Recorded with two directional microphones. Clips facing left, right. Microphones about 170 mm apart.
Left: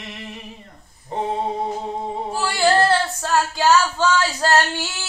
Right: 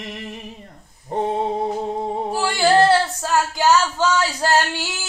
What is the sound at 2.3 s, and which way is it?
Singing, 10° right (ahead or behind).